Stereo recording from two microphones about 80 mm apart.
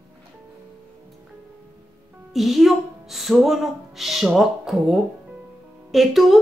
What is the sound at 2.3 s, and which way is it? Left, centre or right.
Speech, centre.